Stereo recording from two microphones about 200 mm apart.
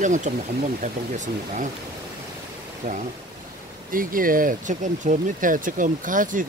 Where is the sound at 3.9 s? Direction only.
45° right (ahead or behind).